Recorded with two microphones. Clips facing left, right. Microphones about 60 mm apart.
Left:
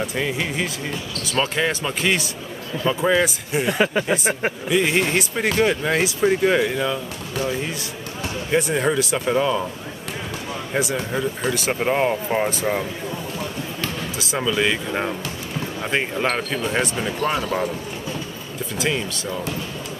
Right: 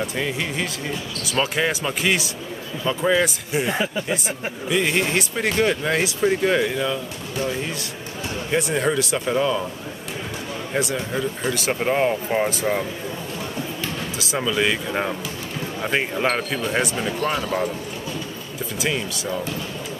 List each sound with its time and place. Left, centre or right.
0.0 s speech: centre
1.2 s speech: centre
3.7 s speech: left
4.6 s speech: centre
8.5 s speech: centre
10.7 s speech: centre
14.1 s speech: centre
18.8 s speech: centre